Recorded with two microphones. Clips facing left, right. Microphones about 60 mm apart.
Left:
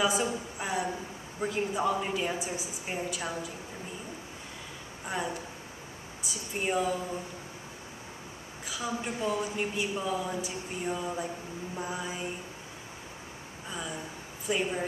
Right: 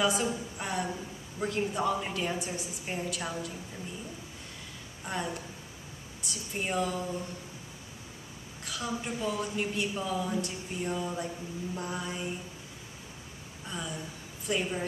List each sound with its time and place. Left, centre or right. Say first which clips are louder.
0.0 s a woman's voice: even; centre
0.6 s a sound: left 3 dB; centre
1.4 s a woman's voice: left 1 dB; centre
5.0 s speech: left 1 dB; centre
8.6 s speech: left 1 dB; centre
13.7 s speech: even; centre